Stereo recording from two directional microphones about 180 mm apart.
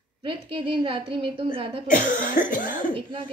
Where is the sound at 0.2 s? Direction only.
30° right (ahead or behind).